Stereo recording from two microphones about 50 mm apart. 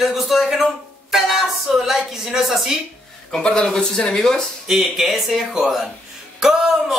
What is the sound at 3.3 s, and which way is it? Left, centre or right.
Speech, centre.